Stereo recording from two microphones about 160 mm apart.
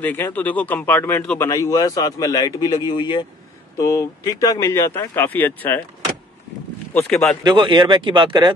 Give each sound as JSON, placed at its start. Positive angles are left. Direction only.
{"t": 0.0, "sound": "speech", "side_deg": 10}
{"t": 1.5, "sound": "speech", "side_deg": 20}
{"t": 6.9, "sound": "speech", "side_deg": 10}
{"t": 7.4, "sound": "speech", "side_deg": -30}